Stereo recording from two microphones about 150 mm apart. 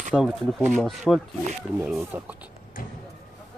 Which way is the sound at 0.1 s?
5° right (ahead or behind).